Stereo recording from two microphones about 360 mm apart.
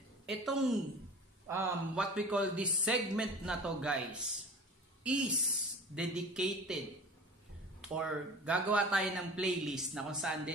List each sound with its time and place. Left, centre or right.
0.3 s a man's voice: centre
7.9 s a man's voice: centre